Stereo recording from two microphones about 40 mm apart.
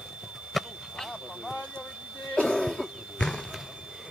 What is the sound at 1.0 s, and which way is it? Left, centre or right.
Vehicle, centre.